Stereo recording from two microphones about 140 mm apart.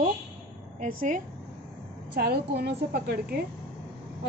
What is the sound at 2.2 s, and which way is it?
Speech, 90° right.